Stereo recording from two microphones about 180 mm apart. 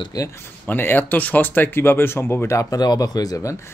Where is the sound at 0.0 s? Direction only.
20° left (ahead or behind).